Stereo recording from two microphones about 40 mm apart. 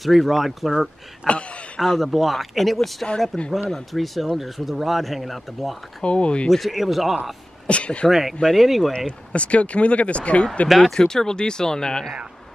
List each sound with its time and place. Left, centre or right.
0.0 s speech: centre
1.2 s speech: left
2.0 s speech: centre
6.0 s speech: left
6.5 s speech: centre
7.6 s speech: left
8.1 s speech: centre
8.4 s speech: centre
9.3 s speech: left
10.8 s speech: centre